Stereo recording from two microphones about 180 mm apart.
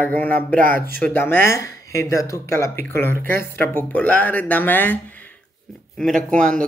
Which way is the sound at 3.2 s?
55° right (ahead or behind).